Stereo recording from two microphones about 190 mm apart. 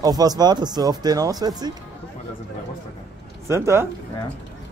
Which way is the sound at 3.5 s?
15° right (ahead or behind).